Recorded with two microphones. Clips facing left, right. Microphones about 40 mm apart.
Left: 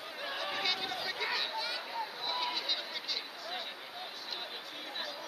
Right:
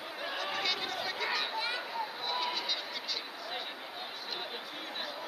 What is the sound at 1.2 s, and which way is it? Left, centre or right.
Chatter, centre.